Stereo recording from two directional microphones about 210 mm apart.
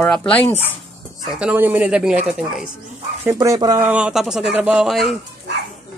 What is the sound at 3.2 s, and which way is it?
Speech, 15° right (ahead or behind).